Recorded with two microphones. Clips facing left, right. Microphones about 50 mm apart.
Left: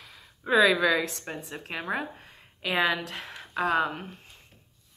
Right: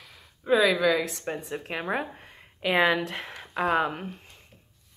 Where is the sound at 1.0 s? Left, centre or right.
Centre.